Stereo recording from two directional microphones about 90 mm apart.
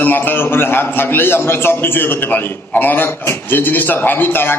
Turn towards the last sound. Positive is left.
turn(degrees=25)  # may be behind; listen again after turning